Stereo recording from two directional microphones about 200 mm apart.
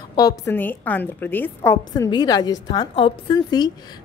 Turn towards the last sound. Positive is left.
turn(degrees=20)  # may be behind; listen again after turning